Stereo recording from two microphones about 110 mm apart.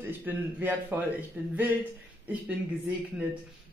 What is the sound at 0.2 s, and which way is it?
A man's voice, 15° right (ahead or behind).